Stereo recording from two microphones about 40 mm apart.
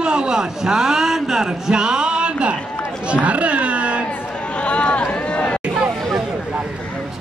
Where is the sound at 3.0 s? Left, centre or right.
Right.